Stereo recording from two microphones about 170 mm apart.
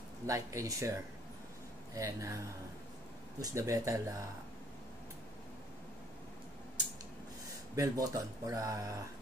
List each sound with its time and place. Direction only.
0.3 s speech: 20° right (ahead or behind)
3.3 s speech: 20° right (ahead or behind)
7.7 s speech: 20° right (ahead or behind)